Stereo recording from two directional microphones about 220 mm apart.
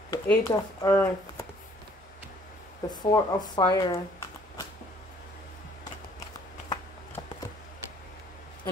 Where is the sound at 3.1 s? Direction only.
15° left (ahead or behind).